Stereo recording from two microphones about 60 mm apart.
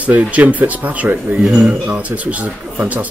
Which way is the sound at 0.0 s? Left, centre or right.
Right.